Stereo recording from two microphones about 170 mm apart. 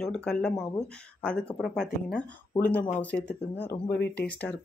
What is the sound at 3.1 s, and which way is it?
Speech, 75° left (ahead or behind).